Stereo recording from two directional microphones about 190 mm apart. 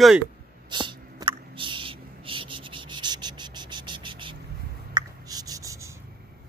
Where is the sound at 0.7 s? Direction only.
25° right (ahead or behind).